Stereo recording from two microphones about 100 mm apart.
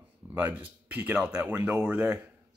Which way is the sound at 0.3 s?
20° right (ahead or behind).